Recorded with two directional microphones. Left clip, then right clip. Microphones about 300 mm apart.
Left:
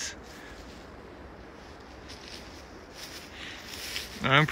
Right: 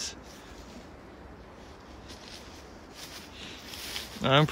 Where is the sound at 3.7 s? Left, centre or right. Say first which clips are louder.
Left 1 dB; right.